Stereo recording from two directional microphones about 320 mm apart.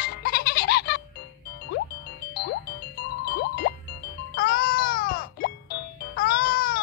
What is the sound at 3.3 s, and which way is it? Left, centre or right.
Music, left.